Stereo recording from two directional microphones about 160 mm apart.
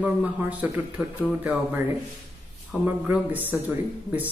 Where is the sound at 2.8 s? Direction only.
10° right (ahead or behind).